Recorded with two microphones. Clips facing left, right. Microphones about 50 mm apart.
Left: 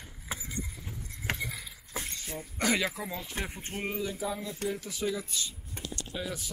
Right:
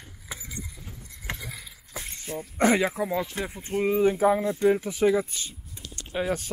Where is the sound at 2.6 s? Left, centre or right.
Right.